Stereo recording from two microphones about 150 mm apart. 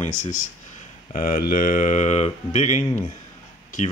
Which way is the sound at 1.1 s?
70° left (ahead or behind).